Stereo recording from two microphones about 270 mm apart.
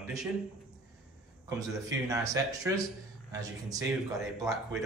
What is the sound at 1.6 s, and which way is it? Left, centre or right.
Speech, centre.